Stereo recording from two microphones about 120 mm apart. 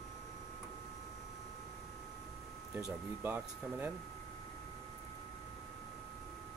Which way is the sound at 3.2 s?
15° right (ahead or behind).